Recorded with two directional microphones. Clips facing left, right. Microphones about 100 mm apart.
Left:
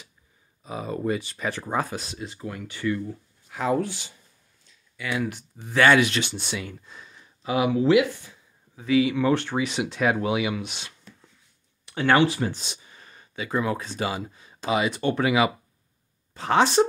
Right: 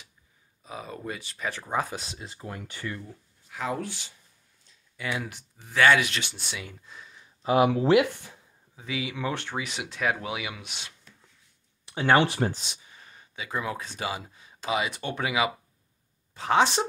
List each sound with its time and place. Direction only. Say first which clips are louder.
0.7 s speech: left 9 dB; 5° left (ahead or behind)
1.9 s speech: left 4 dB; 25° right (ahead or behind)
3.4 s a sound: left 6 dB; 40° left (ahead or behind)
3.8 s speech: left 5 dB; 15° left (ahead or behind)
4.9 s speech: left 3 dB; 30° right (ahead or behind)
5.7 s speech: left 3 dB; centre (ahead or behind)
7.4 s speech: even; 45° right (ahead or behind)
8.7 s speech: left 12 dB; 10° right (ahead or behind)
11.8 s a sound: left 1 dB; 25° right (ahead or behind)
12.2 s speech: left 2 dB; 45° right (ahead or behind)
12.5 s speech: left 2 dB; 10° right (ahead or behind)